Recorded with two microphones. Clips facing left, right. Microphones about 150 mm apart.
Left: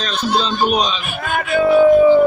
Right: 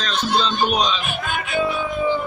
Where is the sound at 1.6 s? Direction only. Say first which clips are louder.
Left 13 dB; 55° left (ahead or behind).